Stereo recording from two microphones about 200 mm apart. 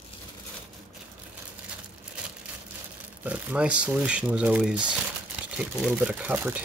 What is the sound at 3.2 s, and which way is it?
Speech, 5° right (ahead or behind).